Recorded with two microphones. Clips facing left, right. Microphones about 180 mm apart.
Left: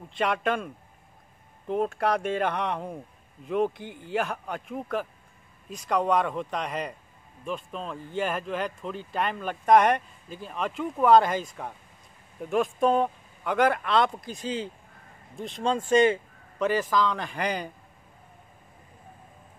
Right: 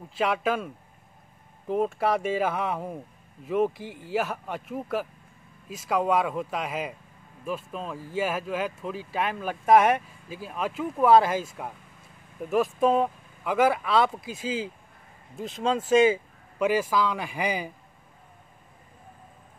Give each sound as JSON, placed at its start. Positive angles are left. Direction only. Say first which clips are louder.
{"t": 0.1, "sound": "speech", "louder": "right 1 dB", "side_deg": -5}
{"t": 1.7, "sound": "speech", "louder": "right 1 dB", "side_deg": 0}